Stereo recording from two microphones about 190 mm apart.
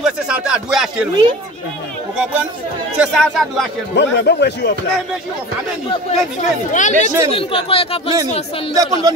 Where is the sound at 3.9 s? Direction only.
65° left (ahead or behind).